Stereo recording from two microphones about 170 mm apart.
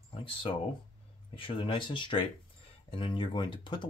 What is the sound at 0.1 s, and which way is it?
Speech, 30° left (ahead or behind).